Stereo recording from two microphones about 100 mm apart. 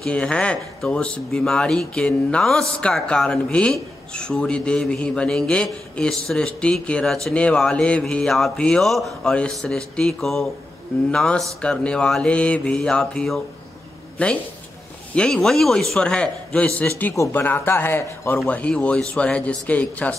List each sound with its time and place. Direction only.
0.0 s a man's voice: 10° left (ahead or behind)